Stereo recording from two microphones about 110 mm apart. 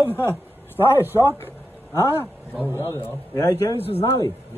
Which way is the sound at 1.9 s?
20° left (ahead or behind).